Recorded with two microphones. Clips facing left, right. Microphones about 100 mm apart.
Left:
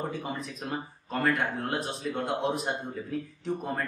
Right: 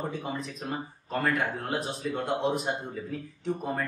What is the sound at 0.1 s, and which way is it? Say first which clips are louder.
A man's voice: right 1 dB; centre (ahead or behind).